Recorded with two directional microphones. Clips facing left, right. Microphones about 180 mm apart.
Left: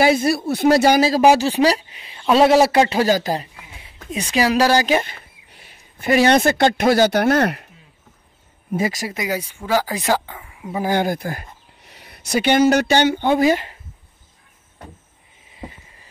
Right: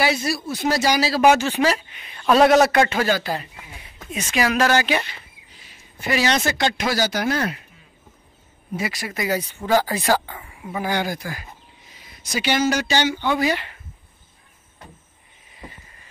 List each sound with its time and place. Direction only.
0.0 s speech: 55° left (ahead or behind)
1.2 s a woman's voice: 35° left (ahead or behind)
3.1 s speech: 40° left (ahead or behind); by 7.6 s 65° left (ahead or behind)
8.7 s speech: 45° left (ahead or behind)
9.1 s speech: 15° left (ahead or behind)
10.2 s a sound: 5° left (ahead or behind)
10.8 s speech: 50° left (ahead or behind)